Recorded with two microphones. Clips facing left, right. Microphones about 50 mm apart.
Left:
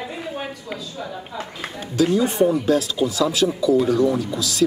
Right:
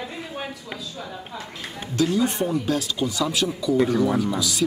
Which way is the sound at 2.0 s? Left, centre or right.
Centre.